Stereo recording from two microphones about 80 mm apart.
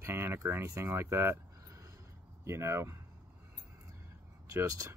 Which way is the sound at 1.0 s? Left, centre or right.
Right.